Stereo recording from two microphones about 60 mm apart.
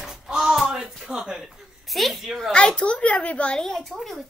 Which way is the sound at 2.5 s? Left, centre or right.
Centre.